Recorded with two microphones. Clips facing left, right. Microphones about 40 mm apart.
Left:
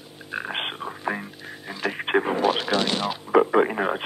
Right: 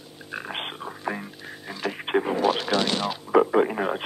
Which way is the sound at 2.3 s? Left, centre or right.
Left.